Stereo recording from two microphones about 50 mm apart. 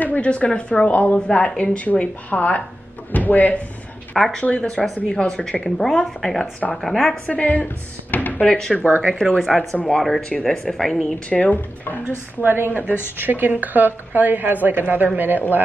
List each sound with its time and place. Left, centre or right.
0.0 s a woman's voice: left
4.4 s a woman's voice: left
5.8 s a woman's voice: centre
7.2 s a woman's voice: left
7.6 s a sound: left
8.4 s a woman's voice: centre
8.7 s a woman's voice: left
9.0 s a woman's voice: centre
9.4 s a woman's voice: centre
11.2 s a woman's voice: left
11.5 s speech: left
12.4 s a woman's voice: right
12.7 s speech: left
13.2 s a woman's voice: right